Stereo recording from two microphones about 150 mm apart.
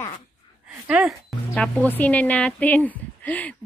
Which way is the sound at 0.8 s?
10° right (ahead or behind).